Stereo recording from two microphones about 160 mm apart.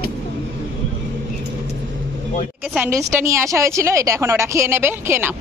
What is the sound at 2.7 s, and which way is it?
A woman's voice, 15° right (ahead or behind).